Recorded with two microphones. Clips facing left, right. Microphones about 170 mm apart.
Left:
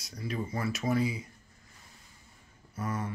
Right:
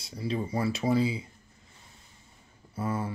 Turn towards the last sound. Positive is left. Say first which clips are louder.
# right 3 dB
turn(degrees=-30)  # may be behind; listen again after turning